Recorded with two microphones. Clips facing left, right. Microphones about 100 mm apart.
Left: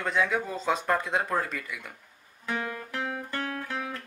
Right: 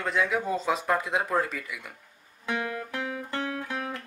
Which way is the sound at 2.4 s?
20° right (ahead or behind).